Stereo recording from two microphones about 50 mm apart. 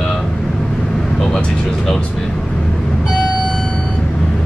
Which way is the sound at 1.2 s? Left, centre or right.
Centre.